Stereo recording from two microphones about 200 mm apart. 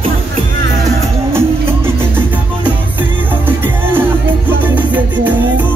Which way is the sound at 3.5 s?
10° right (ahead or behind).